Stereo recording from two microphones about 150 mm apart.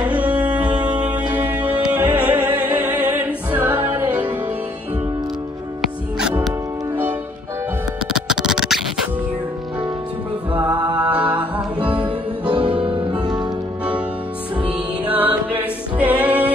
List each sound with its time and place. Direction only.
0.0 s music: 10° right (ahead or behind)
5.8 s music: 5° right (ahead or behind)
8.1 s music: 5° right (ahead or behind)
10.5 s music: 30° right (ahead or behind)
11.0 s music: 10° right (ahead or behind)
12.8 s music: 35° right (ahead or behind)
14.6 s music: 10° right (ahead or behind)